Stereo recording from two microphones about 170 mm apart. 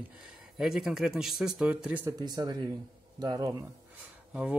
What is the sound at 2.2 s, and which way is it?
Speech, 25° right (ahead or behind).